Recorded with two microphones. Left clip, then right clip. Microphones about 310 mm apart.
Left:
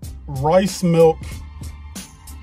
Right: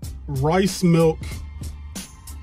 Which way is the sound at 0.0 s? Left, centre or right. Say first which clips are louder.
Left 3 dB; centre.